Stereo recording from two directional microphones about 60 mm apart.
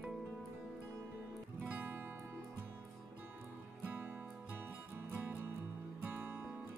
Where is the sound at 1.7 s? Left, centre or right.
Right.